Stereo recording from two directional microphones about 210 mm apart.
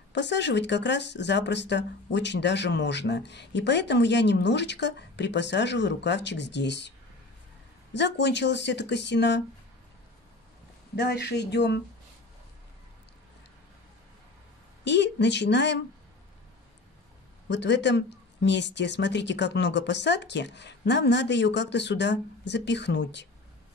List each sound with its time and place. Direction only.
0.1 s speech: 55° left (ahead or behind)
7.9 s speech: 55° left (ahead or behind)
11.0 s speech: 50° left (ahead or behind)
14.9 s speech: 55° left (ahead or behind)
17.5 s speech: 55° left (ahead or behind)